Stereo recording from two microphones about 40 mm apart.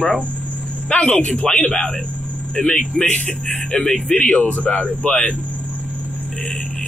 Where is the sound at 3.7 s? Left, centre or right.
Left.